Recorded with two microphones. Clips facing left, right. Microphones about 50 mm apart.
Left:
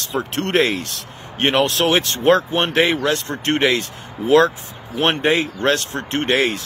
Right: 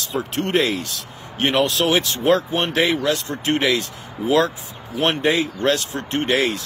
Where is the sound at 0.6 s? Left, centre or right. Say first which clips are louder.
Left 2 dB; left.